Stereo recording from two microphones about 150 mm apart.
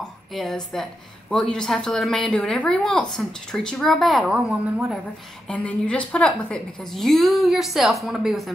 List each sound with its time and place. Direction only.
0.0 s a woman's voice: centre (ahead or behind)
5.5 s a woman's voice: 10° left (ahead or behind)